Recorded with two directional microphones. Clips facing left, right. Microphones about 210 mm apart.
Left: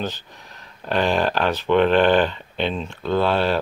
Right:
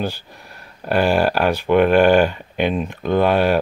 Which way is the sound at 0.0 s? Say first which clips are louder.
Right 3 dB; 10° right (ahead or behind).